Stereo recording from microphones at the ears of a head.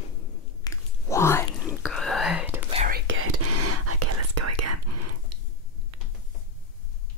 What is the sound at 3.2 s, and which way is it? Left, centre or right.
Whispering, right.